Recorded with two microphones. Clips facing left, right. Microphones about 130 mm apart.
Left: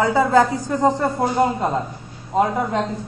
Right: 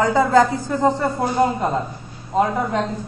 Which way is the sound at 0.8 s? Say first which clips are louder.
Even; 20° left (ahead or behind).